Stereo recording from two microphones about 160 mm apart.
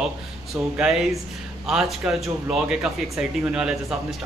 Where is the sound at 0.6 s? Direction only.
5° right (ahead or behind).